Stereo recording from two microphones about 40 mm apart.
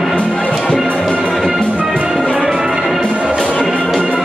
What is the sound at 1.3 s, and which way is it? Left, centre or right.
Music, centre.